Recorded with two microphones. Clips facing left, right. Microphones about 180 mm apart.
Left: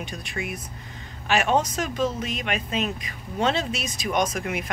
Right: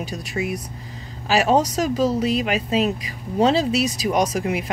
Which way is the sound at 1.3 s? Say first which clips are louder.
Right 4 dB; 35° right (ahead or behind).